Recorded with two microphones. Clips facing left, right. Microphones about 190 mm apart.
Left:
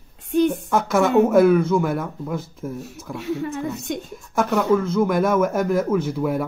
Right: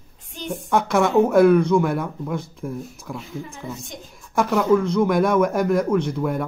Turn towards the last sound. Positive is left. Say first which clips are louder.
# even
turn(degrees=5)  # may be behind; listen again after turning